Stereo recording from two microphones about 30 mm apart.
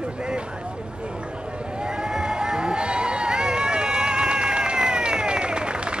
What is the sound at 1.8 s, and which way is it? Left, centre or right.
Run, right.